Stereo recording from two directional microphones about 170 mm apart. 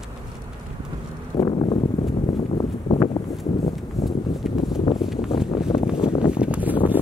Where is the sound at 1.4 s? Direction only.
30° left (ahead or behind).